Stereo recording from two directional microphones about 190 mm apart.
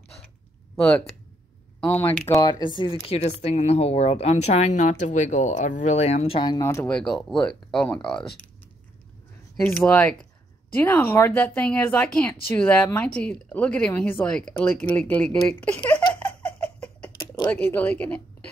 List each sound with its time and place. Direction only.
0.7 s speech: 5° left (ahead or behind)
2.8 s speech: 30° left (ahead or behind); by 8.3 s 5° left (ahead or behind)
9.7 s speech: 10° left (ahead or behind)
16.2 s a sound: 10° left (ahead or behind)
17.5 s speech: 10° left (ahead or behind)